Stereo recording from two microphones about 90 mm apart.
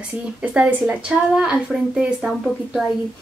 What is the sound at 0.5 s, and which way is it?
Speech, 15° right (ahead or behind).